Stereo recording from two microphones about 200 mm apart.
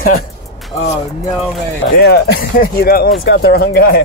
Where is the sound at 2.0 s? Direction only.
55° left (ahead or behind).